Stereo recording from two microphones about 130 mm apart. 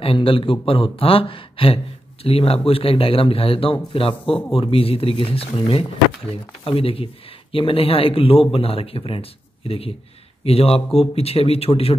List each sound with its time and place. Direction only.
0.0 s speech: 45° left (ahead or behind)